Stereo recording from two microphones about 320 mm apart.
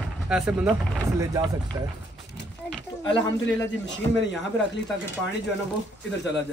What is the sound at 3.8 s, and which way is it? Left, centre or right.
Speech, left.